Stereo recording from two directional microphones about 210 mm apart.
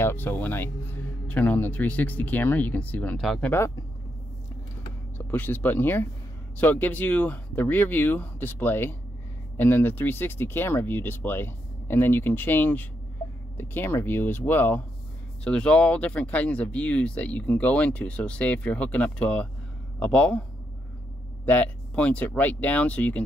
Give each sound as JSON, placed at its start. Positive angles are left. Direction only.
{"t": 0.0, "sound": "speech", "side_deg": 10}
{"t": 5.1, "sound": "speech", "side_deg": 10}
{"t": 21.5, "sound": "speech", "side_deg": 5}